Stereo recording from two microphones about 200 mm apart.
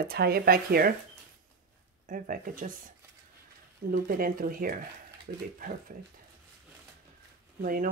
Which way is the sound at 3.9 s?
45° right (ahead or behind).